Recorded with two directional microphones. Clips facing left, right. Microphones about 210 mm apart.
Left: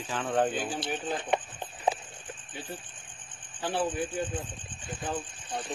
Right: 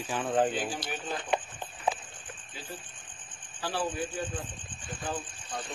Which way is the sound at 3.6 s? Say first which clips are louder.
Left 3 dB; 20° left (ahead or behind).